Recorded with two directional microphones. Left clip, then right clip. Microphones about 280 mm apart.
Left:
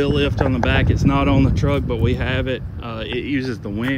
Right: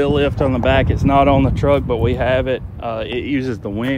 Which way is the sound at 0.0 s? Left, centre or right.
Centre.